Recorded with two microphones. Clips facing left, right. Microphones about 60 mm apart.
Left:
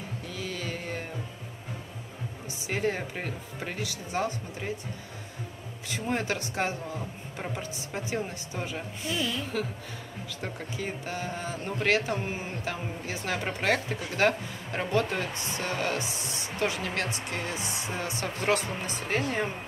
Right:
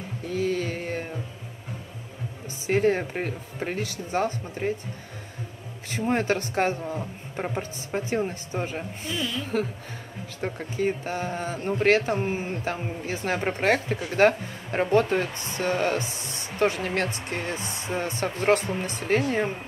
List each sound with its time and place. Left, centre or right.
0.3 s a sound: right
2.6 s speech: right
5.9 s speech: right